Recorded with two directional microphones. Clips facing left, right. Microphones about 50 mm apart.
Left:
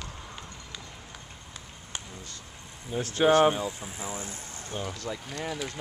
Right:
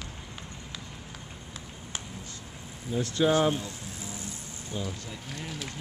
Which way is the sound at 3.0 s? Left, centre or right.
Left.